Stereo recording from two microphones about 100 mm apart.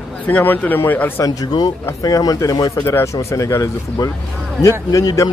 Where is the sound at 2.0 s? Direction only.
40° left (ahead or behind).